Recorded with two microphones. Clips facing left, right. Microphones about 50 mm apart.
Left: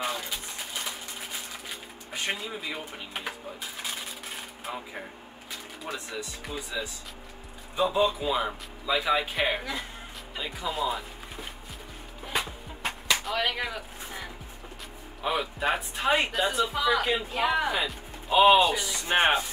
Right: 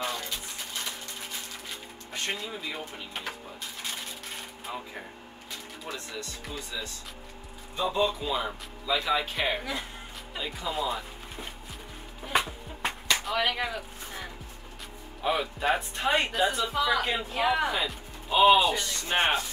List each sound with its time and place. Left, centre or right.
0.0 s a sound: centre
2.1 s a man's voice: centre
4.7 s a man's voice: centre
5.9 s a man's voice: centre
12.4 s music: centre
15.2 s speech: centre
18.9 s a man's voice: centre